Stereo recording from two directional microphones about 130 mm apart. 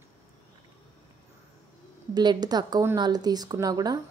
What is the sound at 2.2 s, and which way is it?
Speech, 30° right (ahead or behind).